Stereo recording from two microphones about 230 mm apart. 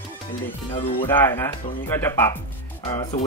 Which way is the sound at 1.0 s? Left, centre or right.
Centre.